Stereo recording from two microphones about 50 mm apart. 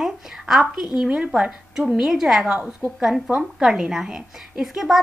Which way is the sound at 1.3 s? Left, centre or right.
Centre.